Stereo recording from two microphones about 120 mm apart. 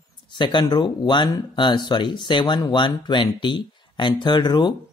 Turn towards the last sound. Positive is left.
turn(degrees=40)  # may be behind; listen again after turning